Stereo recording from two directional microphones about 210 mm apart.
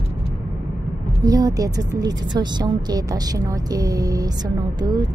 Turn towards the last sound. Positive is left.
turn(degrees=-20)  # may be behind; listen again after turning